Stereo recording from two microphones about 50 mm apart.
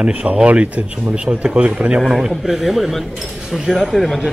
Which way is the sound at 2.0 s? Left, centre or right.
Centre.